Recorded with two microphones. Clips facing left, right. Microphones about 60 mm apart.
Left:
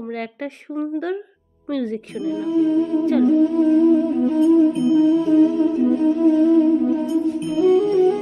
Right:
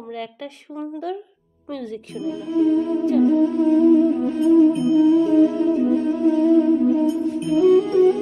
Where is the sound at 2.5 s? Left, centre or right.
Centre.